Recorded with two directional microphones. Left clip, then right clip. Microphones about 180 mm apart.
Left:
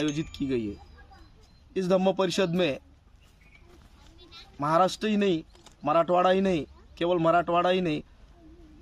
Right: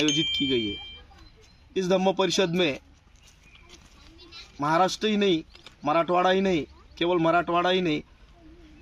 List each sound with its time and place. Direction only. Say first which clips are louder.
0.1 s a man's voice: right 7 dB; 25° left (ahead or behind)
4.2 s a sound: right 3 dB; 60° right (ahead or behind)
4.6 s a man's voice: right 1 dB; 25° left (ahead or behind)